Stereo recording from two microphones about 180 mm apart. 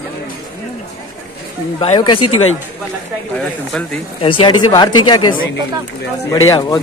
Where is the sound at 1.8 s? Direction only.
30° left (ahead or behind).